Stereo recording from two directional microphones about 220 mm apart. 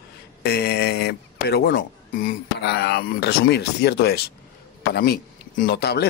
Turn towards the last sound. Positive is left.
turn(degrees=50)  # may be behind; listen again after turning